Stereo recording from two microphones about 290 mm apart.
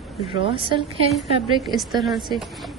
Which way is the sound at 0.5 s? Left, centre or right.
Centre.